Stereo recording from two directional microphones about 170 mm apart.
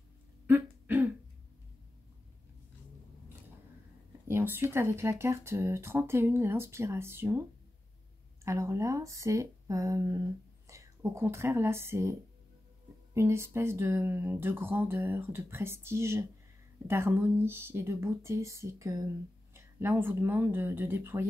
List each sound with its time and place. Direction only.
0.5 s throat clearing: 10° right (ahead or behind)
4.3 s speech: 15° right (ahead or behind)
8.5 s a woman's voice: 15° right (ahead or behind)